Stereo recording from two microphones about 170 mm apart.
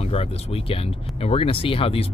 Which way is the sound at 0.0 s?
35° left (ahead or behind).